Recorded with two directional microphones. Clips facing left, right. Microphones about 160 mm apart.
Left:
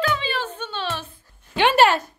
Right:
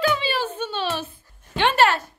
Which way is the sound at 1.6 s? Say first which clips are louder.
Left 2 dB; 10° left (ahead or behind).